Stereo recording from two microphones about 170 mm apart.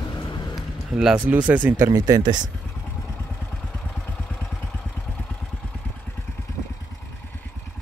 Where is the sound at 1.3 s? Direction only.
10° right (ahead or behind).